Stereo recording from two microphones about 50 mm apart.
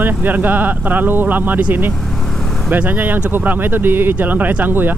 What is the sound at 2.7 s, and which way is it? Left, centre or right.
Speech, right.